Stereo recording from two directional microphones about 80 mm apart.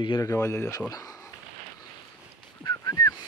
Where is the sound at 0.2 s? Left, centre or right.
Left.